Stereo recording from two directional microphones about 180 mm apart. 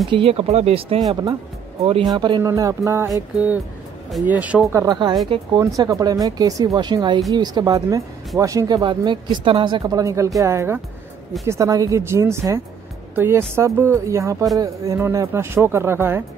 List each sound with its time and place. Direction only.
0.1 s speech: 30° right (ahead or behind); by 3.1 s 15° right (ahead or behind)
4.1 s speech: 10° right (ahead or behind)
4.8 s speech: 25° right (ahead or behind)